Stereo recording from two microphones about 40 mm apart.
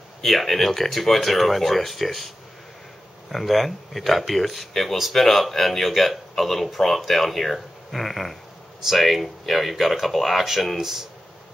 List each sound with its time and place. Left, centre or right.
0.2 s speech: centre